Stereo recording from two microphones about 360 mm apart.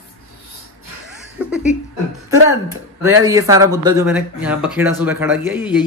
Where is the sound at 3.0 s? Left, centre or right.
Centre.